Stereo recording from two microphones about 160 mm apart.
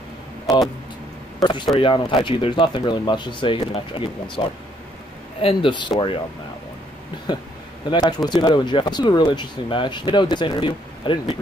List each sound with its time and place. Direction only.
0.5 s speech: centre (ahead or behind)
1.8 s speech: 35° left (ahead or behind)
7.3 s speech: 25° left (ahead or behind)